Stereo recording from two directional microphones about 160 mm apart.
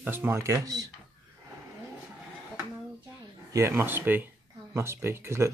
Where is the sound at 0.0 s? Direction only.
10° right (ahead or behind).